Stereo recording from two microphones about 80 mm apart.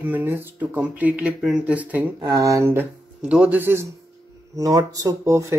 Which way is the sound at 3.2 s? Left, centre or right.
Centre.